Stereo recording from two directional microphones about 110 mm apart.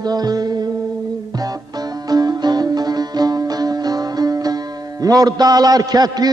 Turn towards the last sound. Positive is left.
turn(degrees=-35)  # may be behind; listen again after turning